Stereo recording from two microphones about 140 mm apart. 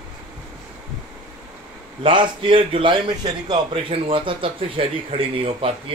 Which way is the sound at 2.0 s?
35° right (ahead or behind).